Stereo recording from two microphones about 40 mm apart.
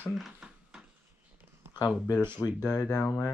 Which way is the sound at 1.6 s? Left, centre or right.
Right.